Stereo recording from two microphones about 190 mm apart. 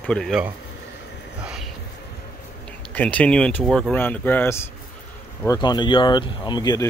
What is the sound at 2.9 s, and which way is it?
Speech, 10° left (ahead or behind).